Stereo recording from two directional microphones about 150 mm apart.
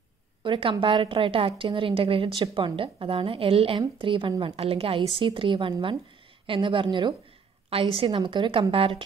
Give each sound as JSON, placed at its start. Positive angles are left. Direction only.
{"t": 0.4, "sound": "a woman's voice", "side_deg": -35}